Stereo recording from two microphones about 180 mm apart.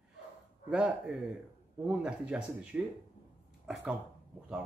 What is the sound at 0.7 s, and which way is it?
Speech, 5° right (ahead or behind).